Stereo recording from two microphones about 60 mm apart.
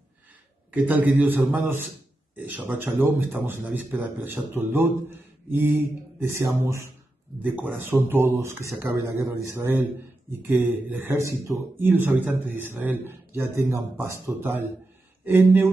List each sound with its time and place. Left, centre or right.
0.7 s a man's voice: right
7.4 s a man's voice: right
8.4 s a man's voice: right
11.1 s a man's voice: right
11.8 s a man's voice: right